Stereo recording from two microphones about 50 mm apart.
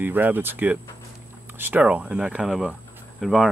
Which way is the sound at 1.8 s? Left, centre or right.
Right.